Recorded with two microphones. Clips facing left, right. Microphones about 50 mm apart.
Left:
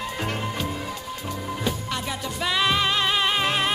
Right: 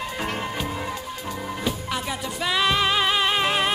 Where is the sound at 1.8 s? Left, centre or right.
Centre.